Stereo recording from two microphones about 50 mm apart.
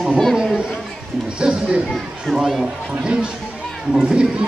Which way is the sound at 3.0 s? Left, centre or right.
Centre.